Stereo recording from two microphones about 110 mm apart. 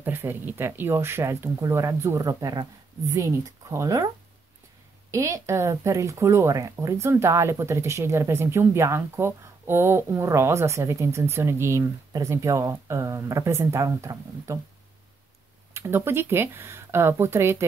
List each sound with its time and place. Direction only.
0.0 s speech: 20° right (ahead or behind)
5.1 s speech: 25° right (ahead or behind)
15.7 s speech: 20° right (ahead or behind)